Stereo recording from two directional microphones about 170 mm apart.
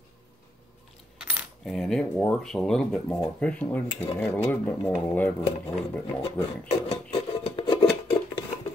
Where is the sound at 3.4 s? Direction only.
10° left (ahead or behind).